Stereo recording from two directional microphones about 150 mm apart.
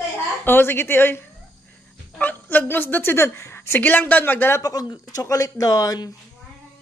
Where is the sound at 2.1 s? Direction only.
10° left (ahead or behind).